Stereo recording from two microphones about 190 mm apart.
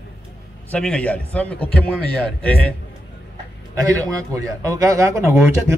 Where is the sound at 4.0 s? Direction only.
15° right (ahead or behind).